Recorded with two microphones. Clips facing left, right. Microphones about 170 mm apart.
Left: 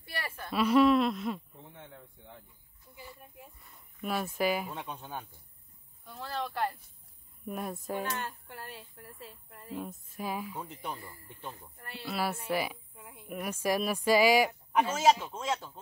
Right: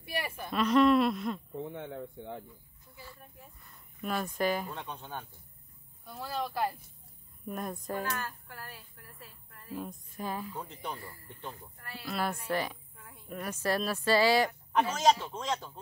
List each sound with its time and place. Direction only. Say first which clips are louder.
0.0 s a sound: right 4 dB; 15° right (ahead or behind)
0.5 s hoot: left 1 dB; 5° left (ahead or behind)
1.6 s speech: right 12 dB; 70° right (ahead or behind)
3.0 s a woman's voice: left 2 dB; 15° left (ahead or behind)
3.6 s a woman's voice: even; centre (ahead or behind)
6.0 s speech: right 1 dB; 10° right (ahead or behind)
7.4 s hoot: even; 5° left (ahead or behind)
8.0 s a woman's voice: even; 25° left (ahead or behind)
9.8 s a woman's voice: even; 5° left (ahead or behind)
11.3 s hoot: right 1 dB; 5° left (ahead or behind)
11.8 s speech: left 2 dB; 25° left (ahead or behind)
12.1 s hoot: even; 5° left (ahead or behind)
12.4 s a woman's voice: left 1 dB; 10° left (ahead or behind)